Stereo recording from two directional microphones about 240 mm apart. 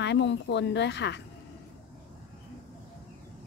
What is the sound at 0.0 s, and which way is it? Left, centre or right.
A woman's voice, left.